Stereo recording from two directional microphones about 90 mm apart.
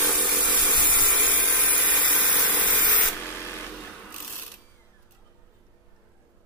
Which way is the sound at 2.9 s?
25° left (ahead or behind).